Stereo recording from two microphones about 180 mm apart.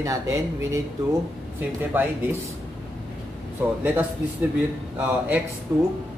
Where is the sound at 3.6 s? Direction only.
10° right (ahead or behind).